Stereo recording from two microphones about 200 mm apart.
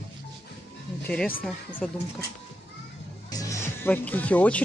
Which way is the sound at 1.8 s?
Centre (ahead or behind).